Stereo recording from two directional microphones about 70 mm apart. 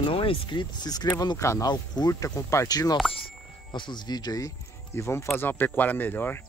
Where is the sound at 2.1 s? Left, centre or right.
Left.